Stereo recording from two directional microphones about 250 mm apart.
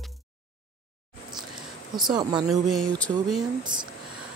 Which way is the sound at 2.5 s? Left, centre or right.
Centre.